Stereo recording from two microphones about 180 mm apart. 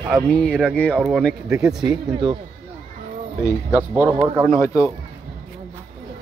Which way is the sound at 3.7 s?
10° right (ahead or behind).